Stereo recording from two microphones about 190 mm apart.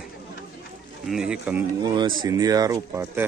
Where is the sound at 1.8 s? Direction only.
25° right (ahead or behind).